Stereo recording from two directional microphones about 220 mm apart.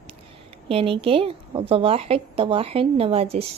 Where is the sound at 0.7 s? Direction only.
25° right (ahead or behind).